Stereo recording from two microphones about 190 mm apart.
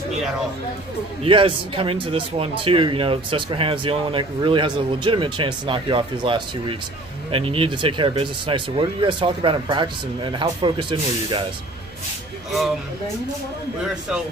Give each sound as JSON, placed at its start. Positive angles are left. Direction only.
{"t": 1.2, "sound": "speech", "side_deg": -30}
{"t": 13.8, "sound": "a man's voice", "side_deg": -5}